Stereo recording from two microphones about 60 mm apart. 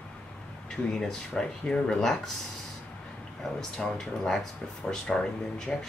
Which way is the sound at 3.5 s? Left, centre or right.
Centre.